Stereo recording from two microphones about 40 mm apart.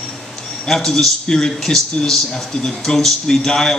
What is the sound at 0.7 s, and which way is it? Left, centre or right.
A man's voice, centre.